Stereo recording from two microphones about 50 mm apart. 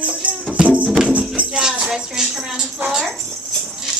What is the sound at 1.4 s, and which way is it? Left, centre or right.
Music, centre.